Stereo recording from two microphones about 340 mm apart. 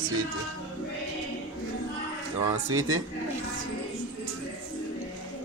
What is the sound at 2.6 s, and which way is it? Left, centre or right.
Speech, right.